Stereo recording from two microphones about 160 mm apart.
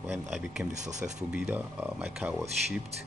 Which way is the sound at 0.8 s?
50° right (ahead or behind).